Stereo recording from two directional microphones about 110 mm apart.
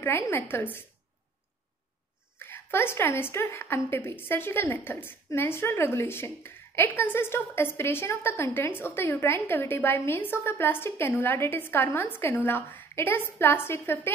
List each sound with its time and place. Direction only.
0.0 s a woman's voice: 20° left (ahead or behind)
2.3 s a woman's voice: 20° left (ahead or behind)